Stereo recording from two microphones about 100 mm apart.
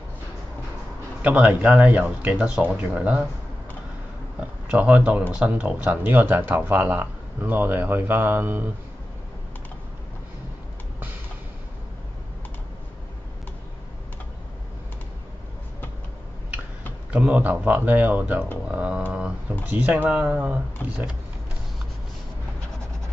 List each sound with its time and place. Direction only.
1.2 s speech: 15° right (ahead or behind)
4.6 s speech: 15° right (ahead or behind)
17.1 s speech: 15° right (ahead or behind)